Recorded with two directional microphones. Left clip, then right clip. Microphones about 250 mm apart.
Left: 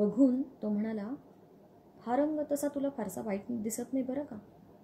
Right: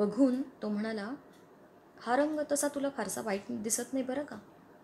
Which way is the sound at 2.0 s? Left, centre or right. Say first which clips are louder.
Right 1 dB; right.